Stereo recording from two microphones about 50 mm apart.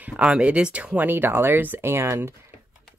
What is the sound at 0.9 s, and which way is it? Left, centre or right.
Speech, right.